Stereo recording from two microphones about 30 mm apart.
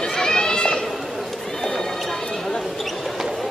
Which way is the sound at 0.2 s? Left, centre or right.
Left.